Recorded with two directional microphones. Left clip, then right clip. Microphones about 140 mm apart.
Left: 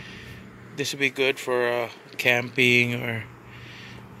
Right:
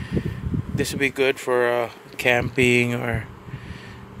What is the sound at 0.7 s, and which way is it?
Speech, 50° right (ahead or behind).